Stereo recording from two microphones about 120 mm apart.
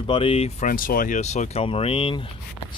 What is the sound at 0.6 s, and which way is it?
Speech, 90° left.